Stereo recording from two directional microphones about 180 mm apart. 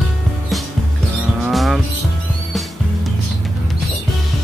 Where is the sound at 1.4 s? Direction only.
Centre (ahead or behind).